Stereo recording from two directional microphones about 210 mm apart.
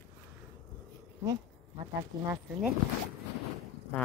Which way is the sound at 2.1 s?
20° right (ahead or behind).